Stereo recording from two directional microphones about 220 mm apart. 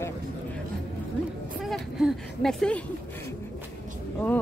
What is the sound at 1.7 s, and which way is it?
Speech, centre (ahead or behind).